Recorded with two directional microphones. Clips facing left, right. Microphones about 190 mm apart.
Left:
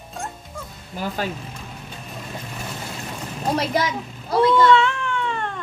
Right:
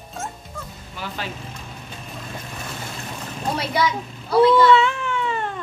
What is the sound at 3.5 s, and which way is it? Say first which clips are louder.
Speech: left 1 dB; 45° left (ahead or behind).